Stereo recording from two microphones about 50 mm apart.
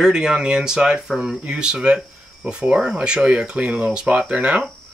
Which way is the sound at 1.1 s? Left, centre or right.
Centre.